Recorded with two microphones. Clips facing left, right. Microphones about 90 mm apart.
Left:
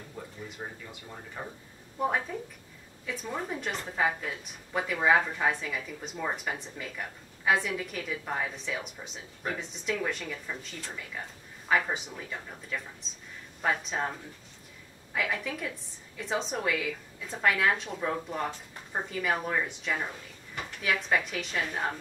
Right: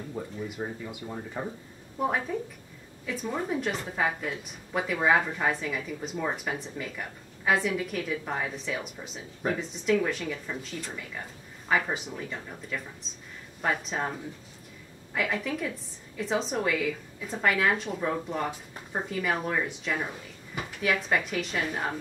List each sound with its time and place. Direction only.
0.2 s speech: 5° right (ahead or behind)
2.0 s a woman's voice: centre (ahead or behind)